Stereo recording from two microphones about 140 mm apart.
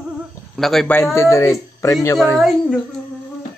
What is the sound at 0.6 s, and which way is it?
Speech, centre (ahead or behind).